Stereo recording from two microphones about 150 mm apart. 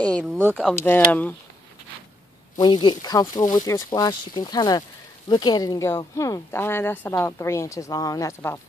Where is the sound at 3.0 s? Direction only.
25° left (ahead or behind).